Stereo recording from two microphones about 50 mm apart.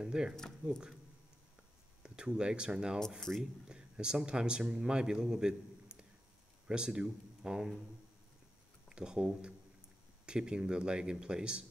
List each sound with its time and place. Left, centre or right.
0.0 s speech: centre
2.0 s speech: centre
3.2 s speech: centre
3.6 s speech: centre
8.8 s speech: centre